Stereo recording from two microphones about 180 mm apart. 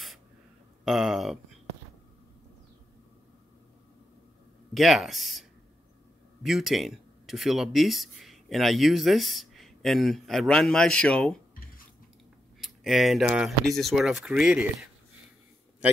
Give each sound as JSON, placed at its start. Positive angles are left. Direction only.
{"t": 0.8, "sound": "speech", "side_deg": 0}
{"t": 4.7, "sound": "speech", "side_deg": 0}
{"t": 12.5, "sound": "speech", "side_deg": 0}